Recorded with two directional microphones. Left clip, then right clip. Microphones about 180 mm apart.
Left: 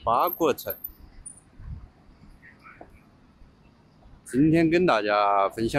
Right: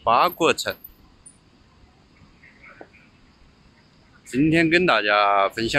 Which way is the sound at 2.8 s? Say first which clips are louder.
Right 5 dB; 30° right (ahead or behind).